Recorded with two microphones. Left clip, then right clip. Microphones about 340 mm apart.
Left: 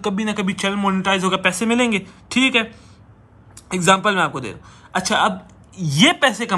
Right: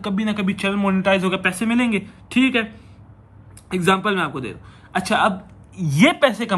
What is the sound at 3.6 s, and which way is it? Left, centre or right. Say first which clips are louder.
A man's voice: left 3 dB; centre.